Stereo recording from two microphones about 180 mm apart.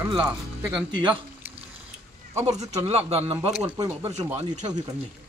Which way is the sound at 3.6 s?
15° right (ahead or behind).